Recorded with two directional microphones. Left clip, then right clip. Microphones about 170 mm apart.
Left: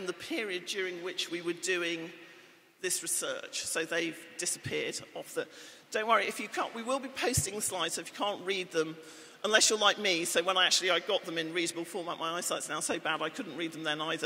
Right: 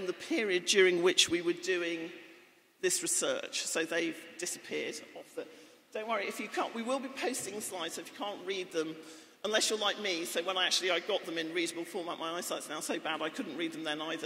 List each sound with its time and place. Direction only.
0.3 s speech: 15° right (ahead or behind)
1.3 s a man's voice: centre (ahead or behind)
2.8 s a man's voice: 15° right (ahead or behind); by 5.0 s 10° left (ahead or behind)
5.9 s a man's voice: 25° left (ahead or behind)
6.2 s a man's voice: 10° left (ahead or behind)